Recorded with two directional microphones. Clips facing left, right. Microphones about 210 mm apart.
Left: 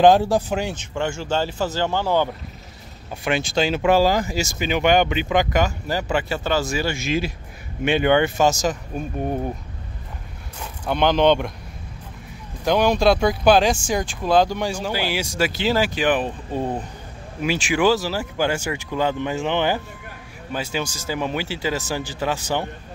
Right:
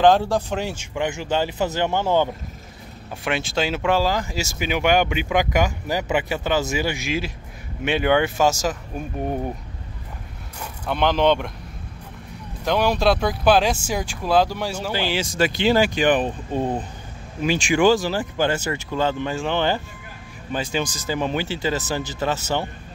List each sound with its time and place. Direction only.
0.0 s speech: 10° left (ahead or behind)
0.9 s speech: 15° right (ahead or behind)
3.3 s speech: 5° right (ahead or behind)
3.9 s speech: 10° left (ahead or behind)
4.4 s speech: 5° right (ahead or behind)
7.8 s speech: centre (ahead or behind)
10.9 s speech: centre (ahead or behind)
12.6 s speech: 5° right (ahead or behind)
14.9 s speech: 10° left (ahead or behind)